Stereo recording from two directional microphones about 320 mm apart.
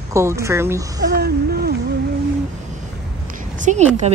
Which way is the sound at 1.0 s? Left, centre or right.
Right.